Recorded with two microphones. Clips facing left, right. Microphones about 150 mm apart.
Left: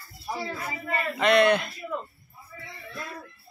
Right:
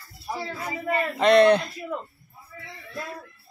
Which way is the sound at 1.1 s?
35° right (ahead or behind).